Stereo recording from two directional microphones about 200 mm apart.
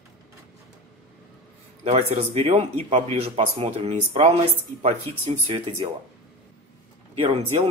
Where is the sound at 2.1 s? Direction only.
30° right (ahead or behind).